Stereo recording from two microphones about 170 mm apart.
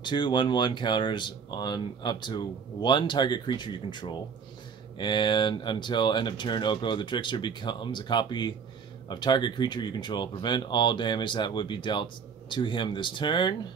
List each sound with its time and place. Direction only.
0.0 s speech: 25° left (ahead or behind)